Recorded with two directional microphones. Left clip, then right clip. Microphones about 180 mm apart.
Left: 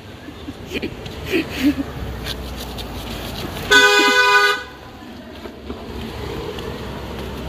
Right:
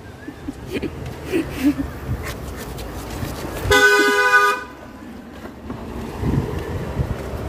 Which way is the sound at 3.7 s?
65° right (ahead or behind).